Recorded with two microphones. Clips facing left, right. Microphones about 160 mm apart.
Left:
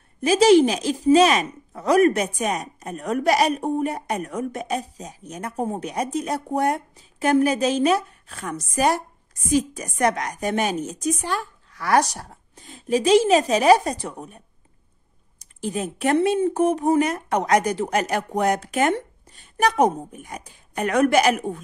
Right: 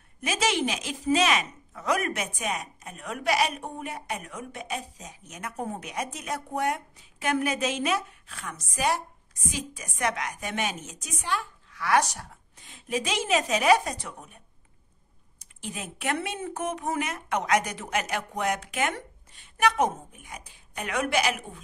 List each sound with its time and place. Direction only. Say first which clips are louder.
0.2 s a woman's voice: left 13 dB; 35° left (ahead or behind)